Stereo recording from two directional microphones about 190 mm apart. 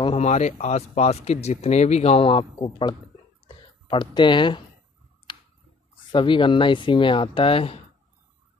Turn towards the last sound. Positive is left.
turn(degrees=30)  # may be behind; listen again after turning